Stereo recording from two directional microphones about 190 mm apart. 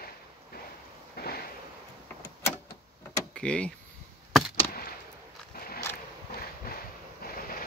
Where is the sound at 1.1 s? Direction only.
55° left (ahead or behind).